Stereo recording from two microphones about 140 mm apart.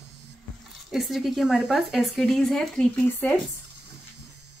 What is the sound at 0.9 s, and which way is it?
A woman's voice, centre (ahead or behind).